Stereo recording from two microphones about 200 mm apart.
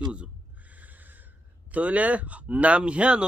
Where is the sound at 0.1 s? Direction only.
5° right (ahead or behind).